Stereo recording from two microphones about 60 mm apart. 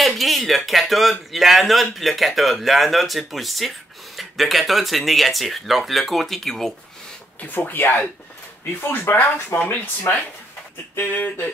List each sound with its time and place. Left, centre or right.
0.0 s a sound: centre
1.3 s speech: centre
7.3 s speech: left
9.0 s speech: left
11.0 s speech: left